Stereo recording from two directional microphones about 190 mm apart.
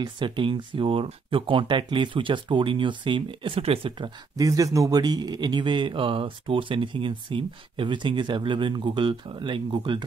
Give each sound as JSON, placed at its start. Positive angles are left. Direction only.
{"t": 0.0, "sound": "speech", "side_deg": -25}